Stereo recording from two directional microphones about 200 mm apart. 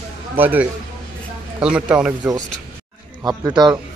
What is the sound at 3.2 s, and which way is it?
Speech, 20° right (ahead or behind).